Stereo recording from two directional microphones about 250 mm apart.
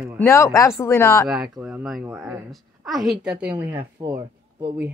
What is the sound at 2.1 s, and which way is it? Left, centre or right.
Speech, centre.